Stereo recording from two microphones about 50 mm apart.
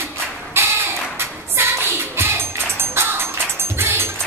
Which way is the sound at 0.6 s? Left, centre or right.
Right.